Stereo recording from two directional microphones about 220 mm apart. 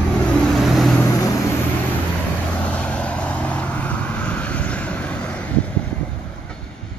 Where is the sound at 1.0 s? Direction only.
15° left (ahead or behind).